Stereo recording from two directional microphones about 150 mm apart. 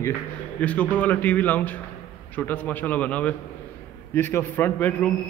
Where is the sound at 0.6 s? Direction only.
10° left (ahead or behind).